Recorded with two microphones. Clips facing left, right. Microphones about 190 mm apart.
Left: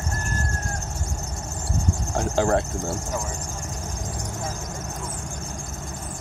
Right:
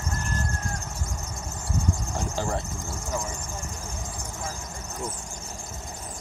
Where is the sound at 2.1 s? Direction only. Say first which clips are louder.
Left 11 dB; 70° left (ahead or behind).